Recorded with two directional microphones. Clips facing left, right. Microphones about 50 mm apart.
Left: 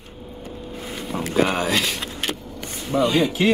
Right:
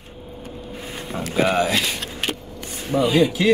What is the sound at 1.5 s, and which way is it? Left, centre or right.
Speech, centre.